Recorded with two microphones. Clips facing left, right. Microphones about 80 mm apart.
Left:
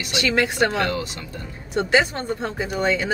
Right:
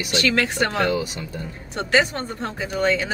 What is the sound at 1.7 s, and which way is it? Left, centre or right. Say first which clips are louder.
Speech: left 1 dB; centre.